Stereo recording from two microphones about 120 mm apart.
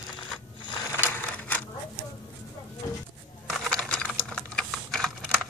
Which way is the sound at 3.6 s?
10° left (ahead or behind).